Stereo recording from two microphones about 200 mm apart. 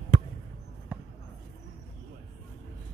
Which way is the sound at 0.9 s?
5° right (ahead or behind).